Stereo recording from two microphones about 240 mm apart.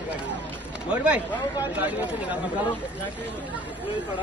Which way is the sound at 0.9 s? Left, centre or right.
Centre.